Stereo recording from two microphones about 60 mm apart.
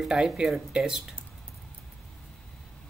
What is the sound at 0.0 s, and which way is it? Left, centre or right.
Speech, centre.